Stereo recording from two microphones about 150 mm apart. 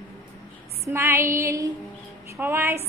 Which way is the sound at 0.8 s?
20° right (ahead or behind).